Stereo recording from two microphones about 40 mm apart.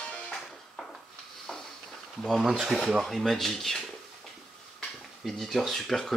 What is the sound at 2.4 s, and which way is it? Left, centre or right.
Speech, centre.